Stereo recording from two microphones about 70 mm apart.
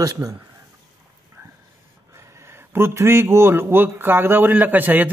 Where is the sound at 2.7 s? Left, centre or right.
Right.